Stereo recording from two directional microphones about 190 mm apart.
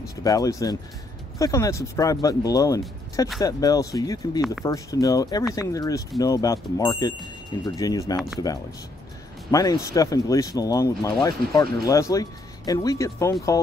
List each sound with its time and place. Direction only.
0.1 s speech: 20° left (ahead or behind)